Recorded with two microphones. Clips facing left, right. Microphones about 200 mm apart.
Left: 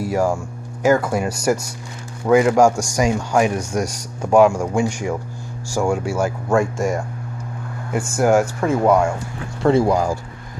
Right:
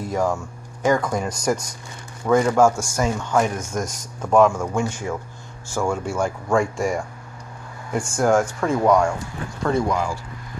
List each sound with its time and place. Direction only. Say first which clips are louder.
0.0 s speech: left 3 dB; 10° left (ahead or behind)
9.6 s speech: left 6 dB; 30° left (ahead or behind)